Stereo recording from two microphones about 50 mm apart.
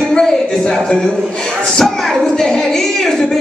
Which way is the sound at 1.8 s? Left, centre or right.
Centre.